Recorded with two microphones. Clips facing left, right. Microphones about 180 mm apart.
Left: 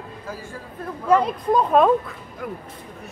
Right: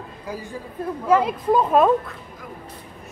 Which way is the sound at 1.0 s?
5° right (ahead or behind).